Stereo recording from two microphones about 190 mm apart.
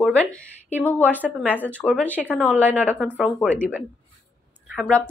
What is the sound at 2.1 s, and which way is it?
Speech, 10° right (ahead or behind).